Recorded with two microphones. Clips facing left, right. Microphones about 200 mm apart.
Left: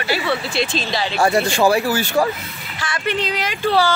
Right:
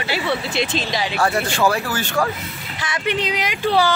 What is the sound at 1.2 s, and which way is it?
Speech, 10° left (ahead or behind).